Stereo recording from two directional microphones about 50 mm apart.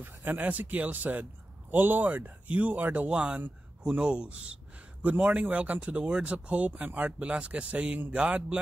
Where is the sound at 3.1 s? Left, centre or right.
Right.